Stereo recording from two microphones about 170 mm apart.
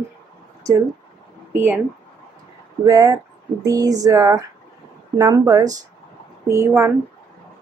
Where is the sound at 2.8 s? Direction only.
20° right (ahead or behind).